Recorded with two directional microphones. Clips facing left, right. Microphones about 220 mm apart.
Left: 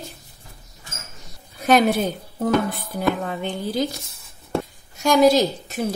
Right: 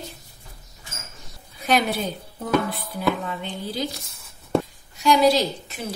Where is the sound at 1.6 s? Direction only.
45° left (ahead or behind).